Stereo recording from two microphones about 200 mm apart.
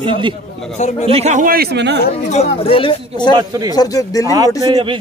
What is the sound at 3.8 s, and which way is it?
Speech, 15° left (ahead or behind).